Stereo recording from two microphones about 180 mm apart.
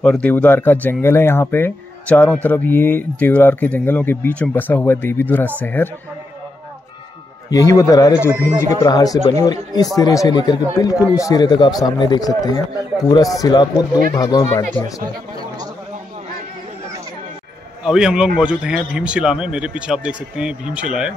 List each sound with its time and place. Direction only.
0.0 s speech: 5° left (ahead or behind)
7.4 s speech: 15° left (ahead or behind)
8.3 s speech: 15° right (ahead or behind)
8.6 s speech: 20° left (ahead or behind)
17.8 s speech: 5° right (ahead or behind)